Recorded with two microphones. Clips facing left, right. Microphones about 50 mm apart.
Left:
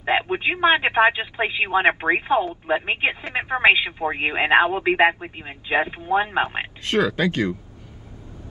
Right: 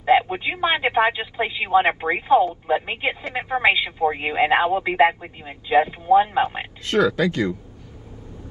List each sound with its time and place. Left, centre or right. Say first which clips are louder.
0.0 s speech: right 3 dB; left